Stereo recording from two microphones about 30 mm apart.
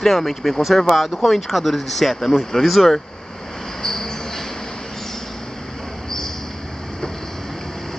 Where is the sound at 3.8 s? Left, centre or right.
Centre.